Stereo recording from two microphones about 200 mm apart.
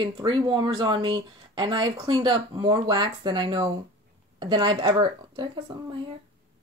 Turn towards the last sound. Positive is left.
turn(degrees=-20)  # may be behind; listen again after turning